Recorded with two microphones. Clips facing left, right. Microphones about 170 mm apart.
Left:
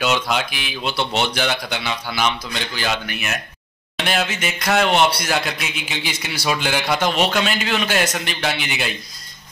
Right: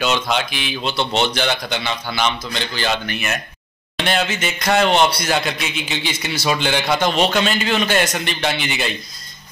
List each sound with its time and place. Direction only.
0.0 s speech: 5° left (ahead or behind)